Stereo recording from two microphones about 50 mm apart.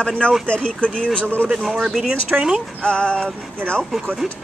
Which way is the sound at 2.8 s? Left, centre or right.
Centre.